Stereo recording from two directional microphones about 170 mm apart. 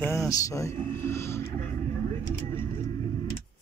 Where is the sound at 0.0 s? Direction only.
20° left (ahead or behind).